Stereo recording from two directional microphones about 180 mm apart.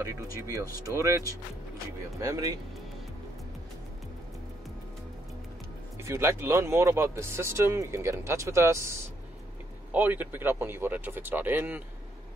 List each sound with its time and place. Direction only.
0.0 s speech: 15° right (ahead or behind)
6.0 s speech: 15° right (ahead or behind)
9.9 s speech: 10° right (ahead or behind)